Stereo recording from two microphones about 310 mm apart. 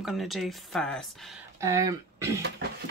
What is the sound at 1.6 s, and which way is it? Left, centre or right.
Speech, centre.